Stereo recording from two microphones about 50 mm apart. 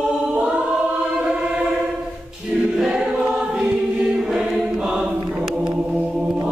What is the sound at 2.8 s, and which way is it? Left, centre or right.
Choir, centre.